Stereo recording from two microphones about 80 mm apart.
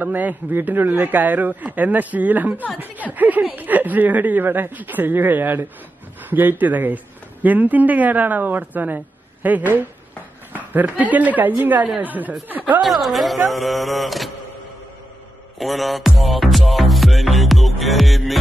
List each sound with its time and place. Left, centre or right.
0.0 s speech: right
12.8 s speech: centre
15.6 s speech: centre
16.2 s music: centre